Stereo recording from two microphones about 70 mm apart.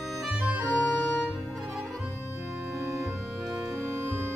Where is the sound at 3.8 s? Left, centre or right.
Right.